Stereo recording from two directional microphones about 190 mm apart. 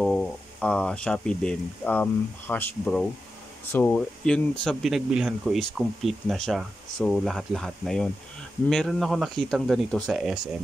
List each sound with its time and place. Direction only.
0.0 s speech: centre (ahead or behind)